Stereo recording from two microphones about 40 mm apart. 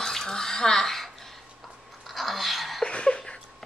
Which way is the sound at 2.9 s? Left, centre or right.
Left.